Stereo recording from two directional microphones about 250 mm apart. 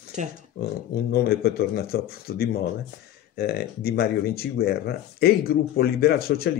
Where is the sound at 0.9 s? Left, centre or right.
Left.